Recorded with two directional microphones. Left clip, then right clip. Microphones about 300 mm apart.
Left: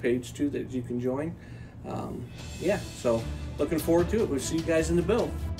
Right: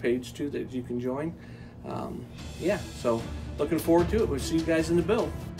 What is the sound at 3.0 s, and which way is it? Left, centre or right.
Speech, centre.